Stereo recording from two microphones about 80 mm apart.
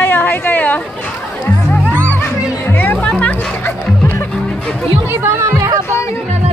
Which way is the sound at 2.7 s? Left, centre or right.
Left.